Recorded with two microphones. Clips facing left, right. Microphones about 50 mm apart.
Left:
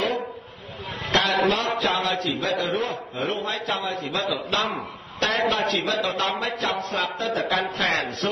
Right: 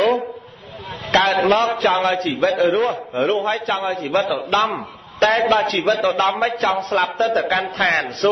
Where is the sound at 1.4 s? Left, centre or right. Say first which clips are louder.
Right 6 dB; right.